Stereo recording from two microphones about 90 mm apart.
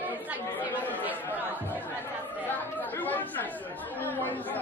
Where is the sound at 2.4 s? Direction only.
20° left (ahead or behind).